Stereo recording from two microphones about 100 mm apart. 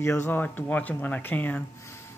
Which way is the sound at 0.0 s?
25° left (ahead or behind).